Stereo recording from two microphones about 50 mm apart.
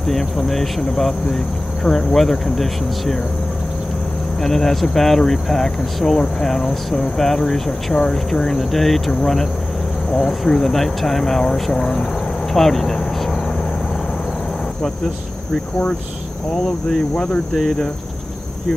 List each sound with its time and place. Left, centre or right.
0.0 s speech: centre
4.4 s speech: centre
17.1 s speech: left